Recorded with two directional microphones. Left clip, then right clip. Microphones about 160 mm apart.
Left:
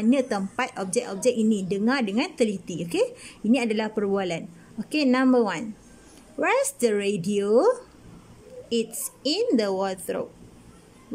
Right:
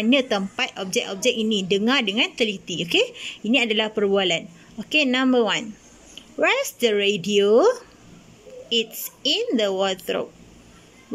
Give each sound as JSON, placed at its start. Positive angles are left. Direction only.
{"t": 0.0, "sound": "speech", "side_deg": 0}
{"t": 2.5, "sound": "a woman's voice", "side_deg": 60}
{"t": 2.8, "sound": "speech", "side_deg": 0}
{"t": 8.6, "sound": "speech", "side_deg": 5}